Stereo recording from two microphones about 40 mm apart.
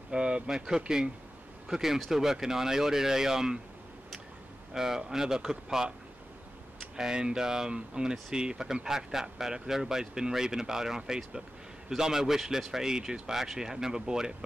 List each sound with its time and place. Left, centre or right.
0.1 s speech: right
4.7 s speech: centre
7.0 s speech: centre